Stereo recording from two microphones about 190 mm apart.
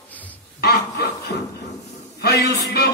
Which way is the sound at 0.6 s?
60° left (ahead or behind).